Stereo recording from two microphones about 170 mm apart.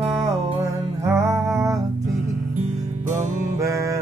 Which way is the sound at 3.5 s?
20° right (ahead or behind).